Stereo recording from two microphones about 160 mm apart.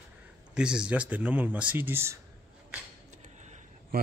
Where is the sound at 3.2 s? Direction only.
45° right (ahead or behind).